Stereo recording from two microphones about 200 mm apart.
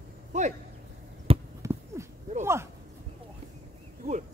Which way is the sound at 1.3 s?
30° right (ahead or behind).